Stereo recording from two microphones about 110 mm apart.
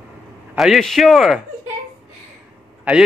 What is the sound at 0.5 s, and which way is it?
Speech, centre (ahead or behind).